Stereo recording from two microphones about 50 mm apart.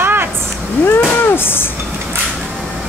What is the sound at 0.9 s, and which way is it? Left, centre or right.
Speech, left.